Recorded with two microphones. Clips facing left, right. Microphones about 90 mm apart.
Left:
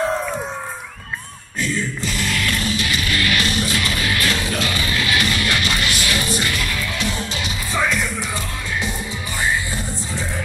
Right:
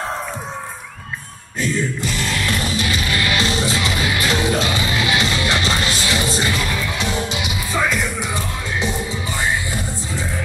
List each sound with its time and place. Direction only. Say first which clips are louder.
2.4 s music: right 1 dB; 25° right (ahead or behind); by 8.0 s 5° right (ahead or behind)